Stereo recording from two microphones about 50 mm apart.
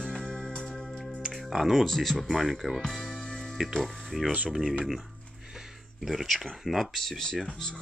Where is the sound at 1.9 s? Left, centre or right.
Centre.